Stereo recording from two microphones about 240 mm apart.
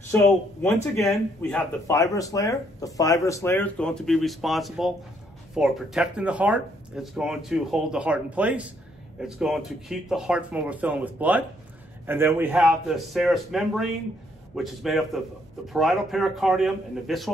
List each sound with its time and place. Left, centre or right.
0.1 s speech: centre